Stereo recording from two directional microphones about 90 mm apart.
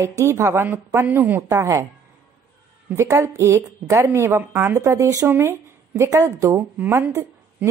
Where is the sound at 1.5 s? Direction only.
35° right (ahead or behind).